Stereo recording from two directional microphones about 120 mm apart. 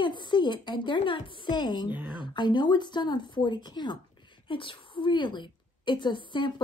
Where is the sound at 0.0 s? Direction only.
40° left (ahead or behind).